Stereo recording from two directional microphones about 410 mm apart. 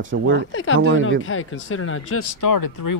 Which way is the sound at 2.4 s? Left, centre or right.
Left.